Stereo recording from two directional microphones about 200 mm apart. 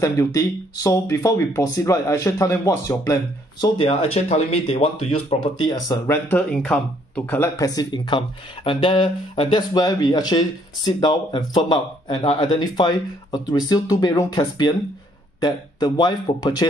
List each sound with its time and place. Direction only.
0.0 s speech: 15° left (ahead or behind)
3.6 s speech: 30° left (ahead or behind)
6.3 s speech: 5° left (ahead or behind); by 16.6 s 20° left (ahead or behind)